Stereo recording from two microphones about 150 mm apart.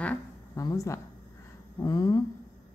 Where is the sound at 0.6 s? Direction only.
25° left (ahead or behind).